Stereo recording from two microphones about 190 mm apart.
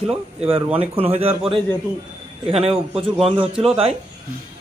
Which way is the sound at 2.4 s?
30° right (ahead or behind).